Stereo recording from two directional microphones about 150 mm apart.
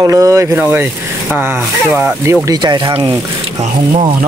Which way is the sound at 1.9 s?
15° right (ahead or behind).